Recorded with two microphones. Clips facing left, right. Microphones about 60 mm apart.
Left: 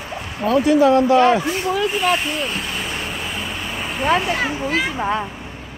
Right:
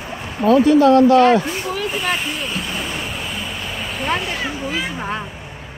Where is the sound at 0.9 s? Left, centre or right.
Centre.